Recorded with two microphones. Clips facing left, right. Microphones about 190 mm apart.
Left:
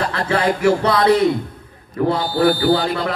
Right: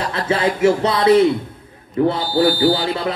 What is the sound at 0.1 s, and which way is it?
Speech, 20° right (ahead or behind).